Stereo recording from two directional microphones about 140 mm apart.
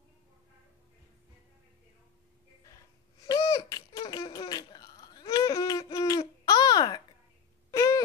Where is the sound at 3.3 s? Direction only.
25° left (ahead or behind).